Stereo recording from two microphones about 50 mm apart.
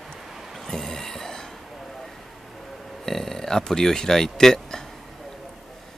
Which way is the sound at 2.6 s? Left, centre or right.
Centre.